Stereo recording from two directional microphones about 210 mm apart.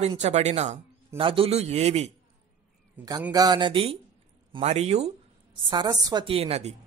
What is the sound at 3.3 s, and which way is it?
A woman's voice, 20° right (ahead or behind).